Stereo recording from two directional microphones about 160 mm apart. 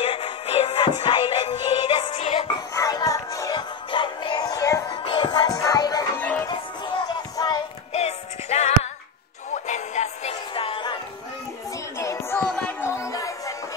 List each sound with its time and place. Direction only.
0.0 s music: 35° left (ahead or behind)
2.7 s music: 20° left (ahead or behind)
6.1 s music: 10° left (ahead or behind)
6.4 s music: 25° left (ahead or behind)
7.9 s music: 40° left (ahead or behind)
10.5 s music: 35° left (ahead or behind)
12.0 s music: 15° left (ahead or behind)
12.4 s music: 5° left (ahead or behind)
12.8 s music: 15° left (ahead or behind)